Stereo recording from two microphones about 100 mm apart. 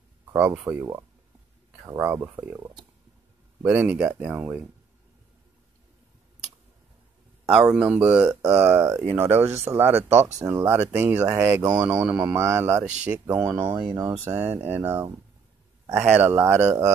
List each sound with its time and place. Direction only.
0.3 s speech: 20° right (ahead or behind)
3.6 s speech: 15° right (ahead or behind)
7.4 s speech: 10° right (ahead or behind)
8.5 s speech: 20° right (ahead or behind)
11.6 s speech: 40° right (ahead or behind)
12.4 s speech: 25° right (ahead or behind)
13.0 s speech: 10° right (ahead or behind)
13.4 s speech: 30° right (ahead or behind)
13.7 s speech: 45° right (ahead or behind)
14.2 s speech: 20° right (ahead or behind)